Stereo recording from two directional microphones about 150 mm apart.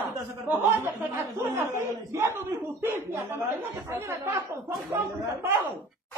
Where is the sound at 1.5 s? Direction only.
20° right (ahead or behind).